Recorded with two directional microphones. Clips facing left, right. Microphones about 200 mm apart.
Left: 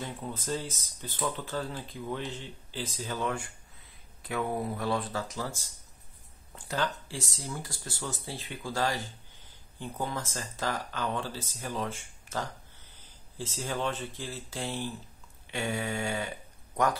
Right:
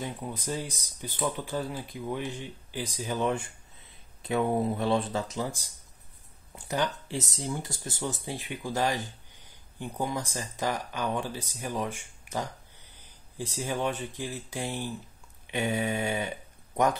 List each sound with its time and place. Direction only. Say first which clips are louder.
0.0 s speech: right 2 dB; 15° right (ahead or behind)